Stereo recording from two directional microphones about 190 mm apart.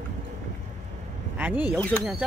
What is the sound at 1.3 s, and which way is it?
Speech, 10° right (ahead or behind).